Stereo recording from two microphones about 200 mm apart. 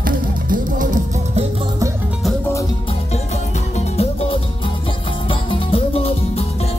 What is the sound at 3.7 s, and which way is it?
Music, 30° left (ahead or behind).